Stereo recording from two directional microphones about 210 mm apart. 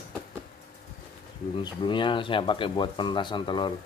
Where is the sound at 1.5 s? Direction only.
20° left (ahead or behind).